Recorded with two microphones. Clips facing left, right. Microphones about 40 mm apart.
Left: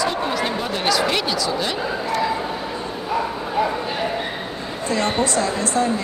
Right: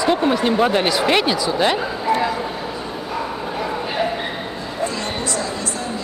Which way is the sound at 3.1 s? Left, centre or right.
Centre.